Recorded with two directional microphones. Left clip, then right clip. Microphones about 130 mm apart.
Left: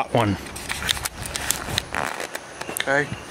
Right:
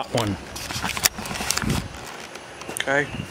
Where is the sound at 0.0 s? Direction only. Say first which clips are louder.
Left 4 dB; 25° left (ahead or behind).